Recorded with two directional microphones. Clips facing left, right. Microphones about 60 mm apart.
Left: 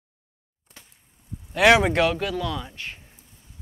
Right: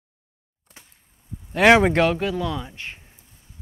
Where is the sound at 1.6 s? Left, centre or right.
Right.